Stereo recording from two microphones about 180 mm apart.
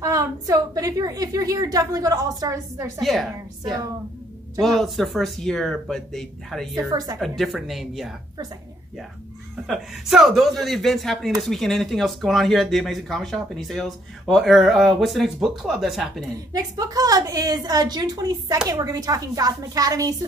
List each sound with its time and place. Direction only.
0.0 s a woman's voice: 20° right (ahead or behind)
3.0 s speech: centre (ahead or behind)
4.6 s speech: centre (ahead or behind)
6.9 s a woman's voice: 20° right (ahead or behind)
7.2 s speech: centre (ahead or behind)
9.7 s speech: centre (ahead or behind)
16.5 s a woman's voice: 20° right (ahead or behind)